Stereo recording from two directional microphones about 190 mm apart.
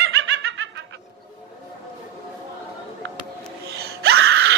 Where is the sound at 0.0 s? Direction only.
90° right.